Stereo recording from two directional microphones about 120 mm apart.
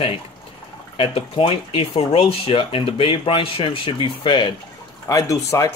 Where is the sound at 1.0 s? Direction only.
50° left (ahead or behind).